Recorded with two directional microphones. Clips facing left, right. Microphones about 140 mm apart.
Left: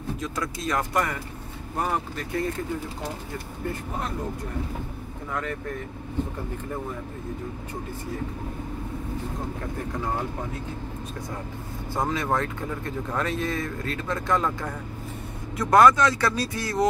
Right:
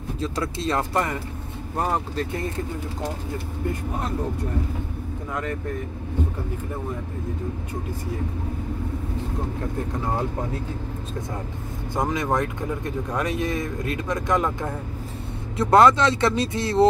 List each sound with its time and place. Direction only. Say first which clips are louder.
0.2 s speech: right 8 dB; 30° right (ahead or behind)
11.9 s speech: right 2 dB; 15° right (ahead or behind)